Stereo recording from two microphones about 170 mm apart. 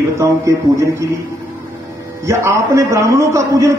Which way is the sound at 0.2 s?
15° right (ahead or behind).